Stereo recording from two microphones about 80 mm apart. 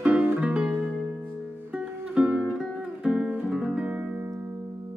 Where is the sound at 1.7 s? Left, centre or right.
Centre.